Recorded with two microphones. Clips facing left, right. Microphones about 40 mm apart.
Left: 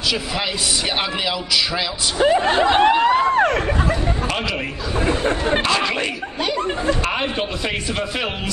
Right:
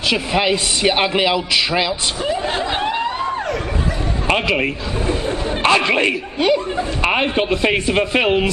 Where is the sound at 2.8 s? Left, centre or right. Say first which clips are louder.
Left 6 dB; left.